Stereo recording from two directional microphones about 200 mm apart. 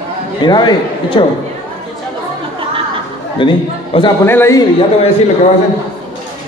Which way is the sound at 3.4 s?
25° left (ahead or behind).